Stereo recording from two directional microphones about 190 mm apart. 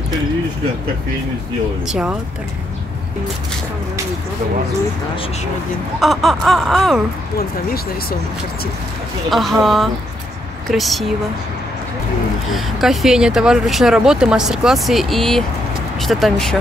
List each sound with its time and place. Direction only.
1.9 s speech: 5° right (ahead or behind)
5.9 s speech: centre (ahead or behind)
7.3 s speech: 50° left (ahead or behind)
9.3 s speech: centre (ahead or behind)
12.5 s speech: centre (ahead or behind)